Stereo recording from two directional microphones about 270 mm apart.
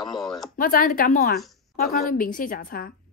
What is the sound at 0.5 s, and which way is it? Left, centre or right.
Speech, left.